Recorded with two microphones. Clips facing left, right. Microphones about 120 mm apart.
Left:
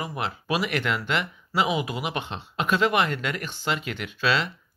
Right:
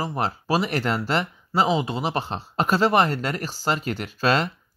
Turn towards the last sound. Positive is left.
turn(degrees=-45)  # may be behind; listen again after turning